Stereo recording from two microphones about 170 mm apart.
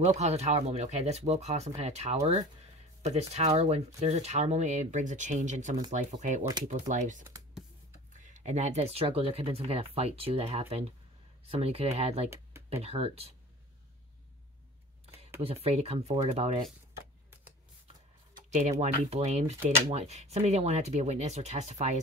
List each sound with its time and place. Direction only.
0.0 s speech: 40° right (ahead or behind)
15.4 s speech: 35° right (ahead or behind)
18.3 s speech: 45° right (ahead or behind)